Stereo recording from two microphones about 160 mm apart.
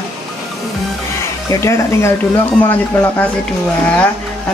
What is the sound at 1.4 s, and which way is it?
Speech, 20° left (ahead or behind).